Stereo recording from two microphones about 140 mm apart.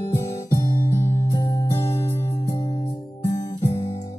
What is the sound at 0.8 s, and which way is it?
Music, 20° left (ahead or behind).